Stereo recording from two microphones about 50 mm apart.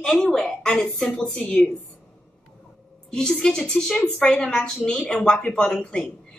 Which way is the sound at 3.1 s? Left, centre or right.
Centre.